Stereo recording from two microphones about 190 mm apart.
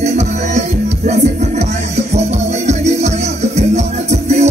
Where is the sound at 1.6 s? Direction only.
35° right (ahead or behind).